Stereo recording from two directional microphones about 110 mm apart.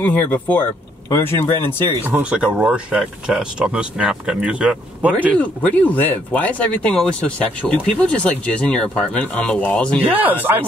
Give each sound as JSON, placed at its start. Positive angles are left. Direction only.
{"t": 0.0, "sound": "speech", "side_deg": 15}
{"t": 2.0, "sound": "speech", "side_deg": -15}
{"t": 5.4, "sound": "speech", "side_deg": 15}
{"t": 10.0, "sound": "speech", "side_deg": -15}